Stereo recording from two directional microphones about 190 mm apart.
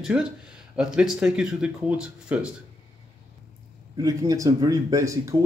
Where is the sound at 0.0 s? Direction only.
5° right (ahead or behind).